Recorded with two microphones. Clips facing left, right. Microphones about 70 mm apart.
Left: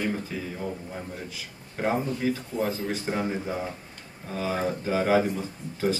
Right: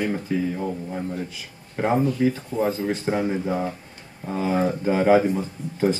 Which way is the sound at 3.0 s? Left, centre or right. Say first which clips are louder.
Right 5 dB; right.